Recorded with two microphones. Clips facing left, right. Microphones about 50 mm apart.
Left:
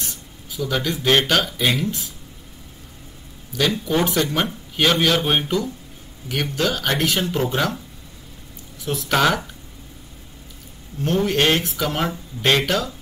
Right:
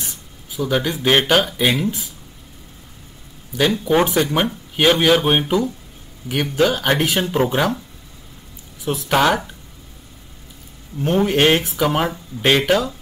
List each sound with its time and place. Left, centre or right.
0.6 s speech: centre
3.8 s speech: right
8.8 s speech: centre
11.0 s speech: right